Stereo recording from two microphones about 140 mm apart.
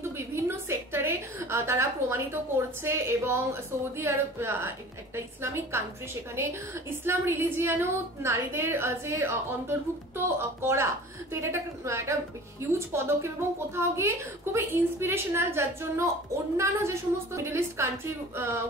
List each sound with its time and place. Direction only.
0.3 s a woman's voice: 20° right (ahead or behind)